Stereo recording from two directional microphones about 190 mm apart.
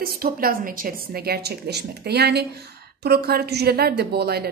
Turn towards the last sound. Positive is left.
turn(degrees=-55)  # may be behind; listen again after turning